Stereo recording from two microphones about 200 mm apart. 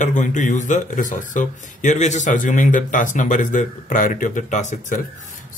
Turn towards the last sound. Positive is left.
turn(degrees=40)  # may be behind; listen again after turning